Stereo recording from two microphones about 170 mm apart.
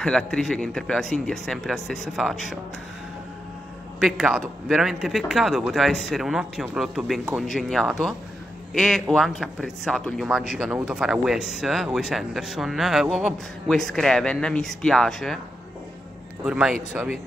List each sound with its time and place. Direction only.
0.0 s a man's voice: 5° left (ahead or behind)
4.0 s a man's voice: 5° right (ahead or behind)
16.4 s a man's voice: 5° right (ahead or behind)